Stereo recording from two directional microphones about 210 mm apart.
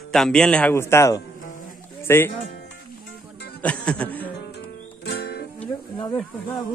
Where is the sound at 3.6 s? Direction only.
5° left (ahead or behind).